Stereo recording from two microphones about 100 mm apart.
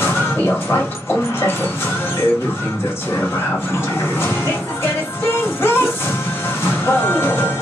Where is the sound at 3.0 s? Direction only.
20° left (ahead or behind).